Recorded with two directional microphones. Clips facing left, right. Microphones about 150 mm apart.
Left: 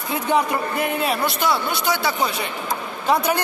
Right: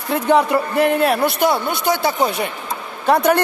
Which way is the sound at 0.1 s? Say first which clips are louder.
Right 5 dB; 65° right (ahead or behind).